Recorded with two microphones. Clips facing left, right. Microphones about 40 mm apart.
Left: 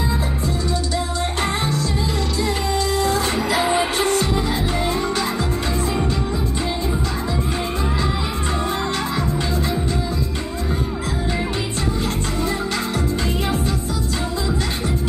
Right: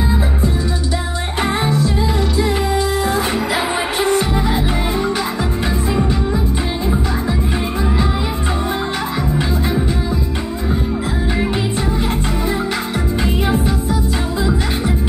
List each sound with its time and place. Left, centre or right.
1.4 s music: centre